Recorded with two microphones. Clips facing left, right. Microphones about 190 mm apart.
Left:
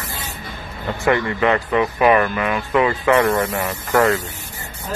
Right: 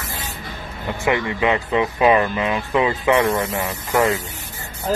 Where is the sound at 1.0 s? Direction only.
15° right (ahead or behind).